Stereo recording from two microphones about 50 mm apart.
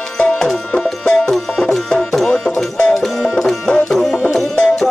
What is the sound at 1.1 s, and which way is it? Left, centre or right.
Music, centre.